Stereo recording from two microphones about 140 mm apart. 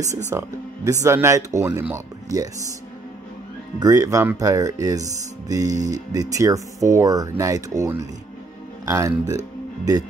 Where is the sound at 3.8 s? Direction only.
25° right (ahead or behind).